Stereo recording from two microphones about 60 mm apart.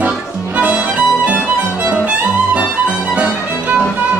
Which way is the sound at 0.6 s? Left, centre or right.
Right.